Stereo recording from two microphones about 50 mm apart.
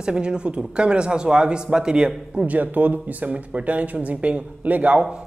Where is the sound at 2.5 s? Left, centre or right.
Right.